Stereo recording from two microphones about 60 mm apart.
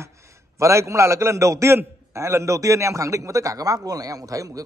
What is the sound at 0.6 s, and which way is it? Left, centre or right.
A man's voice, right.